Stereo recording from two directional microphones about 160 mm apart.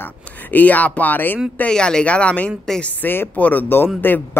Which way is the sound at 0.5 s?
10° left (ahead or behind).